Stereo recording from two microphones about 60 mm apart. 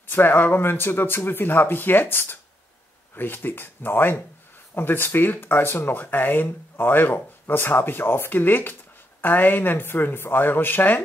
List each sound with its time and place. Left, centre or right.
0.1 s speech: left